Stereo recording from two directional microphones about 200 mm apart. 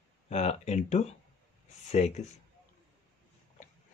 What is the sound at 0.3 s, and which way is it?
Speech, 35° left (ahead or behind).